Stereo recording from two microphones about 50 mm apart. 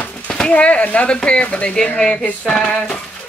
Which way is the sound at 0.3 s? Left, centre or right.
Left.